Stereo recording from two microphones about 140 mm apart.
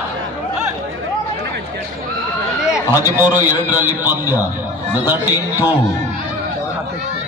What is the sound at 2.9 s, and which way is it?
A man's voice, 15° right (ahead or behind).